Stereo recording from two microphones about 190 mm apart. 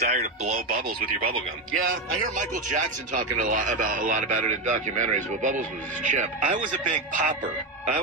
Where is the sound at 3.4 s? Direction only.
45° right (ahead or behind).